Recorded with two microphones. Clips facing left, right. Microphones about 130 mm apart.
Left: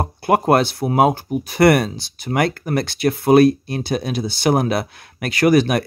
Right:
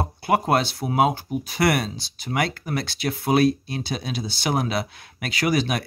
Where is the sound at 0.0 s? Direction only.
50° left (ahead or behind).